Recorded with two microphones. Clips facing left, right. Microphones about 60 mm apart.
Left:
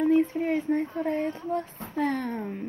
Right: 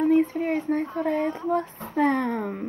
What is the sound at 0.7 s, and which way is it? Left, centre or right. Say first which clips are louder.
A child's voice: right 2 dB; right.